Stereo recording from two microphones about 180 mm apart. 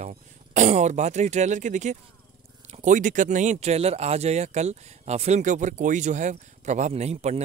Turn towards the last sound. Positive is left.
turn(degrees=-40)  # may be behind; listen again after turning